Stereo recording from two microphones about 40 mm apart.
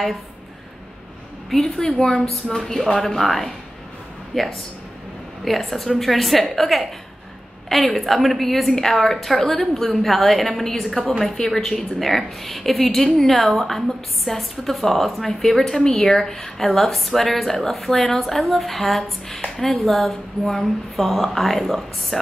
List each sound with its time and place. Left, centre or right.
1.5 s a woman's voice: centre
2.9 s a woman's voice: centre